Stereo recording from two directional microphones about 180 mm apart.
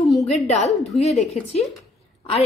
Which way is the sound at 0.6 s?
35° left (ahead or behind).